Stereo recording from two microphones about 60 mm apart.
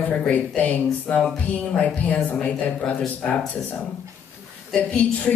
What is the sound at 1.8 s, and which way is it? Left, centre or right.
Speech, left.